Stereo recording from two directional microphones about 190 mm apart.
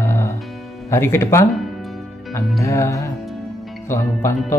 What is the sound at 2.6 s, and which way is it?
Speech, 15° left (ahead or behind).